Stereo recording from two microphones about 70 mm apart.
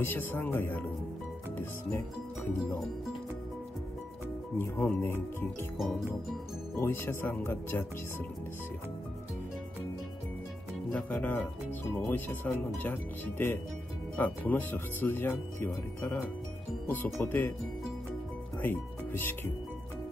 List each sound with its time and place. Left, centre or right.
0.0 s speech: left
5.0 s speech: left
5.8 s music: centre
6.7 s speech: left
10.9 s speech: left
18.6 s speech: left